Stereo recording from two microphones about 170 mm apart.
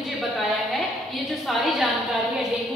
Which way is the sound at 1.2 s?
Centre (ahead or behind).